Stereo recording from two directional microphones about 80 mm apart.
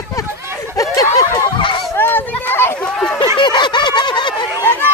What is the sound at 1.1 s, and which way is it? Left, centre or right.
Snicker, left.